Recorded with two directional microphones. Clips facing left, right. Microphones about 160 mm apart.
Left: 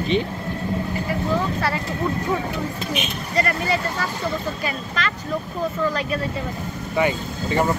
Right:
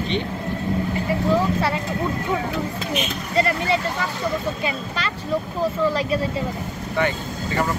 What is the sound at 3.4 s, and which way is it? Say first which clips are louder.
Speech: right 2 dB; 25° right (ahead or behind).